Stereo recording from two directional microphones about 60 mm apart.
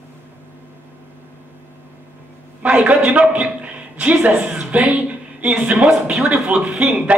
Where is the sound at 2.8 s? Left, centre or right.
Right.